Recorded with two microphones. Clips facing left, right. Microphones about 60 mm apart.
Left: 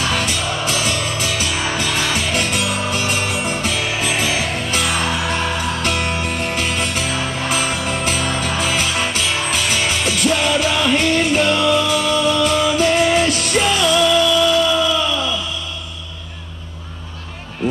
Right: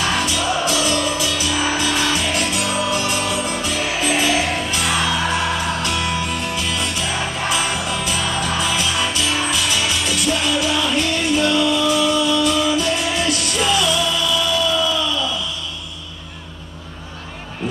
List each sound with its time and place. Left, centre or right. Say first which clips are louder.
0.3 s music: right 1 dB; left